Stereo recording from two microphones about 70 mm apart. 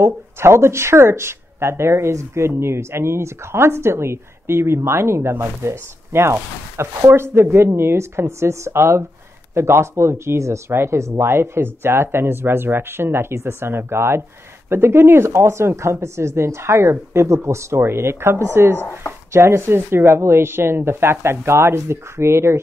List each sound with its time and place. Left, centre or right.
0.0 s speech: right